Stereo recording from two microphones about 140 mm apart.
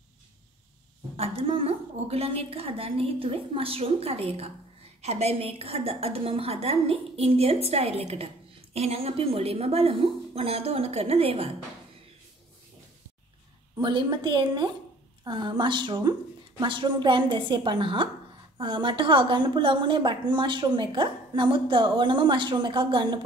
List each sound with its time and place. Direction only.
1.1 s a woman's voice: 45° right (ahead or behind)
13.7 s a woman's voice: 35° right (ahead or behind)